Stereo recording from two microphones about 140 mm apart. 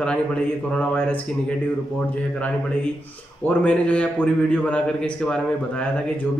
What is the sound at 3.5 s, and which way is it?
A man's voice, 10° left (ahead or behind).